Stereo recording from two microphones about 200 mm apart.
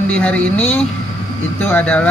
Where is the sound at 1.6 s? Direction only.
10° left (ahead or behind).